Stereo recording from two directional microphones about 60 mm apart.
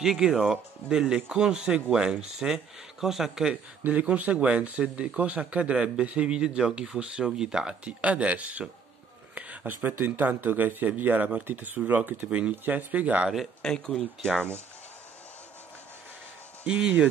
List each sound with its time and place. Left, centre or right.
0.0 s speech: centre
3.8 s speech: right
13.6 s speech: centre
16.6 s speech: centre